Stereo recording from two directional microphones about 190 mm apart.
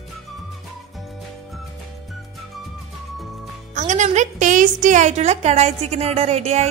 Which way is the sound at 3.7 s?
40° right (ahead or behind).